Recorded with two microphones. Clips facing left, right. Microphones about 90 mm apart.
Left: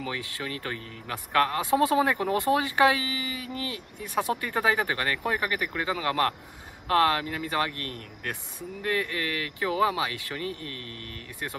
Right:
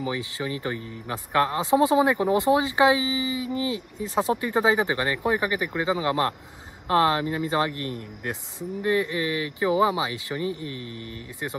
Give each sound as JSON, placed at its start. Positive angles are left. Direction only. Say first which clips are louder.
{"t": 0.0, "sound": "speech", "louder": "right 5 dB", "side_deg": -20}